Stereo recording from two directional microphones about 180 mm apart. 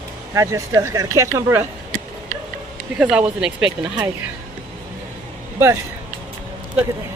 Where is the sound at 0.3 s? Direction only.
15° right (ahead or behind).